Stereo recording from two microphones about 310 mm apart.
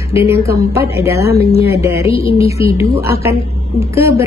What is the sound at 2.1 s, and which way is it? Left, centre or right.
Speech, centre.